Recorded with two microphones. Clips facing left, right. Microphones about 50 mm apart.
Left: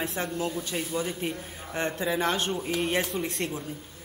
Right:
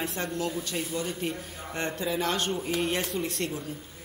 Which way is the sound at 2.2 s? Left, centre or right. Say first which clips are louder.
Left 1 dB; centre.